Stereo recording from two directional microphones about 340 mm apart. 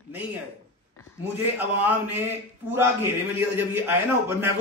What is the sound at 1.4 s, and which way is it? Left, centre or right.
A man's voice, centre.